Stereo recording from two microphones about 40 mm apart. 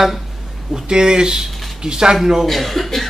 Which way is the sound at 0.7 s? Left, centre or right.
Centre.